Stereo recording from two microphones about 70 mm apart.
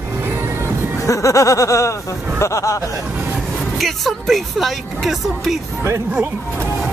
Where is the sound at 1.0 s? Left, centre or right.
Left.